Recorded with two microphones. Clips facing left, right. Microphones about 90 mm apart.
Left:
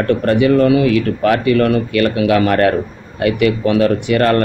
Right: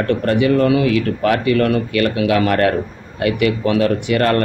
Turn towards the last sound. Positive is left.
turn(degrees=35)  # may be behind; listen again after turning